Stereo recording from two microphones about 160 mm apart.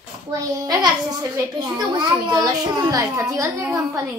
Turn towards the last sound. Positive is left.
turn(degrees=-20)  # may be behind; listen again after turning